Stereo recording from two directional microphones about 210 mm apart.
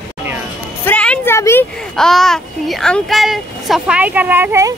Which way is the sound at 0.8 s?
5° left (ahead or behind).